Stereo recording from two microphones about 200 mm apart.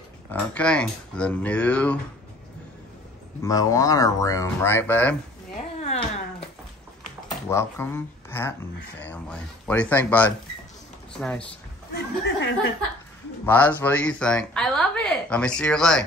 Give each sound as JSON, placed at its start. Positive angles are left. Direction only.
{"t": 0.3, "sound": "speech", "side_deg": 5}
{"t": 3.4, "sound": "speech", "side_deg": 15}
{"t": 5.8, "sound": "a sound", "side_deg": 30}
{"t": 7.4, "sound": "speech", "side_deg": 10}
{"t": 11.9, "sound": "speech", "side_deg": 65}
{"t": 13.5, "sound": "speech", "side_deg": 10}